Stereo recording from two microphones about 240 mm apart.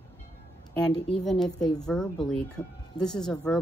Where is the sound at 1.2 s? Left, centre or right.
Centre.